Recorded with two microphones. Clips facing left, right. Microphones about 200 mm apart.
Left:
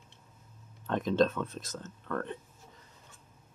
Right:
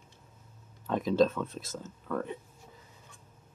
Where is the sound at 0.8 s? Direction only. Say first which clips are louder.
Right 1 dB; 5° right (ahead or behind).